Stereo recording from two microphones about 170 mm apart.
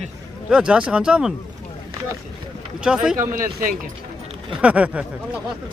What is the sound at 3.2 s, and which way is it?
Speech, 55° right (ahead or behind).